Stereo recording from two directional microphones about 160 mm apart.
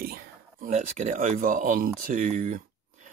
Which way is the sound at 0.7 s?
50° right (ahead or behind).